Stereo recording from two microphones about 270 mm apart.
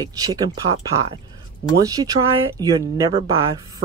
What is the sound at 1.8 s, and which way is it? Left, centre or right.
Speech, centre.